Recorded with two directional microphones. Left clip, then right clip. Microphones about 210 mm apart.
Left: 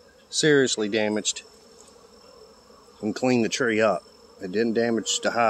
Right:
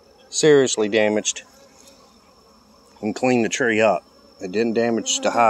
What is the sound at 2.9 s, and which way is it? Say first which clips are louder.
Speech: right 4 dB; 15° left (ahead or behind).